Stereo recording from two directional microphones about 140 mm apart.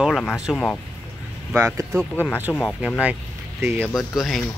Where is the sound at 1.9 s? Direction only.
10° left (ahead or behind).